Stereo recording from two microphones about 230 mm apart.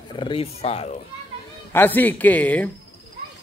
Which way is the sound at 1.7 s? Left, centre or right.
Centre.